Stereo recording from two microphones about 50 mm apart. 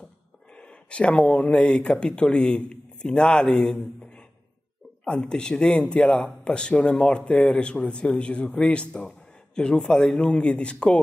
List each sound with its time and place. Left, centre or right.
0.5 s speech: left